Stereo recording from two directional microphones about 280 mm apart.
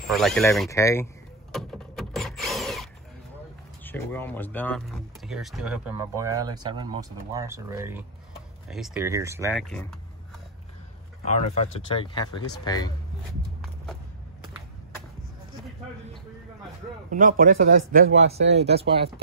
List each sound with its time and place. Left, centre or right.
0.1 s speech: centre
1.5 s tools: centre
3.8 s speech: centre
9.5 s speech: centre
11.5 s speech: left
17.1 s speech: right